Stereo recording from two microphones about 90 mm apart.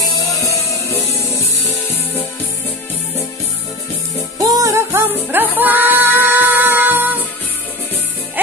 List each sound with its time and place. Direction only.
0.1 s music: 40° left (ahead or behind)
4.4 s music: 40° right (ahead or behind)
4.7 s music: 25° right (ahead or behind)